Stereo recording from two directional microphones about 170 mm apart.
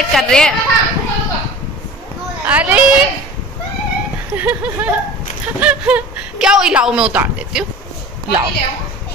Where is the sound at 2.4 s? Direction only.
10° right (ahead or behind).